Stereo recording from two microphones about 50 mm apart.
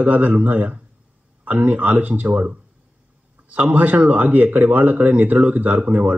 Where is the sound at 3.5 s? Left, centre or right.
Right.